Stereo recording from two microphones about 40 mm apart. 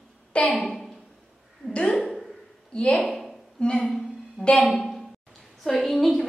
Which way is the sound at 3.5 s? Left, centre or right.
Left.